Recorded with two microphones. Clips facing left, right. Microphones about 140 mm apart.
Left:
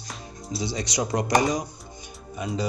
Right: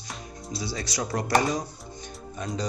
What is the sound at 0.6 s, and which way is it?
Speech, 20° left (ahead or behind).